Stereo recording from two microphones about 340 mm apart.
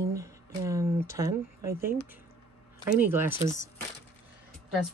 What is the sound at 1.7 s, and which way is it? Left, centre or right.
Speech, right.